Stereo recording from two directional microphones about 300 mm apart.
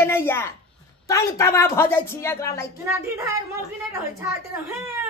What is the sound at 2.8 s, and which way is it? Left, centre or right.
Speech, centre.